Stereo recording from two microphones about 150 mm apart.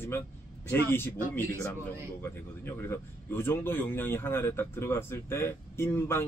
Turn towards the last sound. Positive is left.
turn(degrees=15)  # may be behind; listen again after turning